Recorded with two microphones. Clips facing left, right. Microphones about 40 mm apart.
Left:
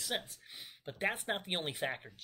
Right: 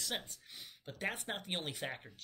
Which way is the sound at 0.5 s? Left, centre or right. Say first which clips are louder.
Left 4 dB; left.